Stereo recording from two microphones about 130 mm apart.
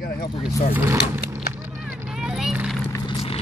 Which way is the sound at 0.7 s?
20° right (ahead or behind).